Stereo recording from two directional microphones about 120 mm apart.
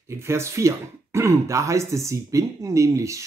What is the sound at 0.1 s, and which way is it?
Speech, 25° right (ahead or behind).